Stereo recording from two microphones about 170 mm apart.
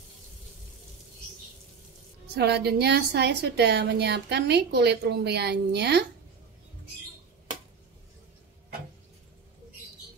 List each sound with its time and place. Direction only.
2.3 s a woman's voice: 75° right (ahead or behind)